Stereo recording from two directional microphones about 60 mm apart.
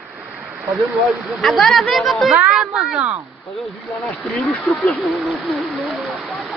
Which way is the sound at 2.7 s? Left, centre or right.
Centre.